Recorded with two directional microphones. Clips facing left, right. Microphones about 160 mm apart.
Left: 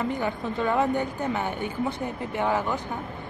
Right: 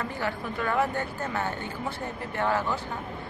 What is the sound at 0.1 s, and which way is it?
A woman's voice, 20° left (ahead or behind).